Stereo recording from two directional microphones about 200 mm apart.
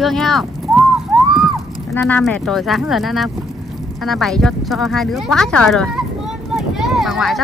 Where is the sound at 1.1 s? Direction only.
Centre (ahead or behind).